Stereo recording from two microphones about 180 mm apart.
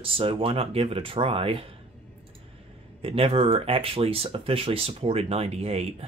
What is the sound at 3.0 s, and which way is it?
Speech, 30° right (ahead or behind).